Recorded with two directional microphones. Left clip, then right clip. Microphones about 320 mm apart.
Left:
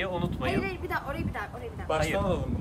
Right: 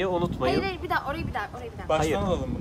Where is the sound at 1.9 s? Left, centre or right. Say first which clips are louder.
Right 3 dB; right.